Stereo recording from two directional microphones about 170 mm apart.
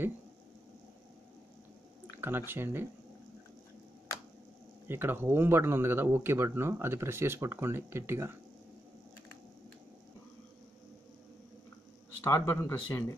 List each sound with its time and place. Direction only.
2.0 s speech: 10° right (ahead or behind)
4.8 s speech: 15° right (ahead or behind)
12.2 s speech: 20° left (ahead or behind)